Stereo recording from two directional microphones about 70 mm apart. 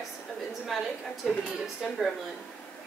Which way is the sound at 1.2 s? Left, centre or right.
Centre.